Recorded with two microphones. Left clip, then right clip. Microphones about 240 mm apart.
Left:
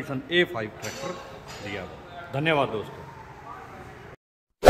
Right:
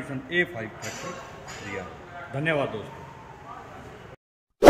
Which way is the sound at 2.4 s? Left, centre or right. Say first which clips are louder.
Left 2 dB; centre.